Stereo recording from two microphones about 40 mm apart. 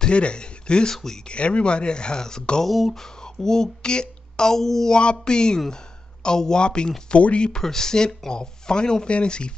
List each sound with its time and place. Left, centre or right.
0.0 s speech: left
0.9 s speech: centre
1.2 s speech: left
2.6 s speech: centre
2.9 s speech: centre
5.1 s speech: centre
7.6 s speech: centre